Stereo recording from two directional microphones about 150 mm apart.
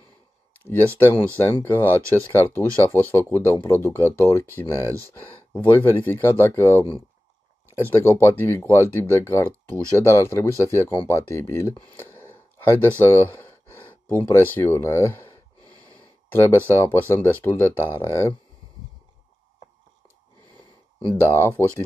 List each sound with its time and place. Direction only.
0.7 s speech: 15° left (ahead or behind)
16.3 s speech: 15° left (ahead or behind)
21.2 s speech: 15° left (ahead or behind)